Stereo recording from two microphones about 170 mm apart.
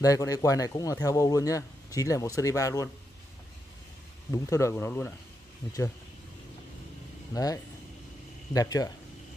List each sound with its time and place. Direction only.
0.0 s speech: 20° left (ahead or behind)
4.3 s speech: 15° left (ahead or behind)
7.3 s speech: 20° left (ahead or behind)